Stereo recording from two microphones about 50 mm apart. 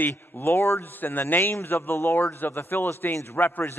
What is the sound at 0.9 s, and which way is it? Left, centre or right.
A man's voice, left.